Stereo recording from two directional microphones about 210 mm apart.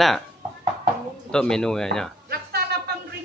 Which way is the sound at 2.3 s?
50° right (ahead or behind).